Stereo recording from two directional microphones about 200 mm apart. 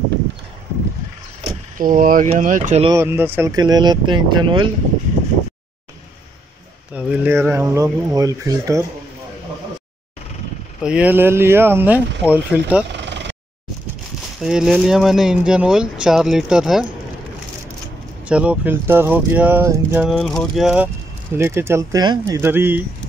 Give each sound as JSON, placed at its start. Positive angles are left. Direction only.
{"t": 1.8, "sound": "speech", "side_deg": -45}
{"t": 2.9, "sound": "speech", "side_deg": -10}
{"t": 6.9, "sound": "speech", "side_deg": -5}
{"t": 10.8, "sound": "speech", "side_deg": -5}
{"t": 13.0, "sound": "vehicle", "side_deg": -60}
{"t": 14.4, "sound": "speech", "side_deg": -5}
{"t": 18.3, "sound": "speech", "side_deg": -5}
{"t": 20.1, "sound": "speech", "side_deg": 0}